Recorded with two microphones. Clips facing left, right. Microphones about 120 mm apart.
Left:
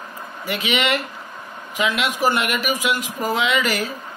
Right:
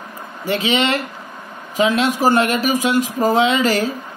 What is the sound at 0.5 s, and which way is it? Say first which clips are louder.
Speech: right 4 dB; 35° right (ahead or behind).